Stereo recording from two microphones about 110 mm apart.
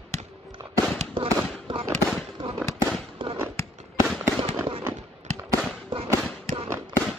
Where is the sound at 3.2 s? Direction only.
50° right (ahead or behind).